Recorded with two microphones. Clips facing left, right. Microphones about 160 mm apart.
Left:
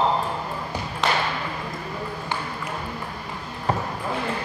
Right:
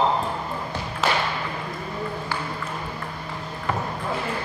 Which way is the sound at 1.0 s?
5° right (ahead or behind).